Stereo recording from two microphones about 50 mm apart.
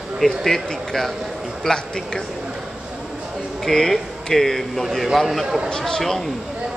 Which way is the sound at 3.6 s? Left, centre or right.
Centre.